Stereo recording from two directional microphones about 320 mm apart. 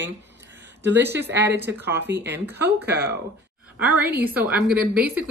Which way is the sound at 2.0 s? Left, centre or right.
Right.